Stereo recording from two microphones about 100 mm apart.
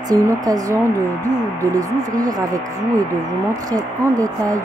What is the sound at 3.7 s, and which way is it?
Speech, 35° right (ahead or behind).